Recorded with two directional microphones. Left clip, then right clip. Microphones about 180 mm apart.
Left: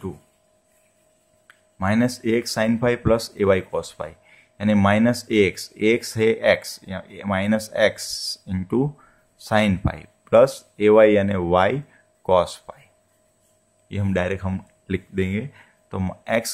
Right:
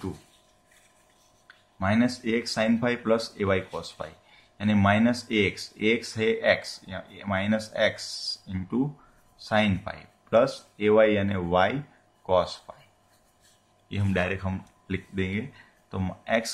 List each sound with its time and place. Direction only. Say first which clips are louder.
1.5 s speech: left 3 dB; 55° left (ahead or behind)
13.8 s speech: left 4 dB; 45° left (ahead or behind)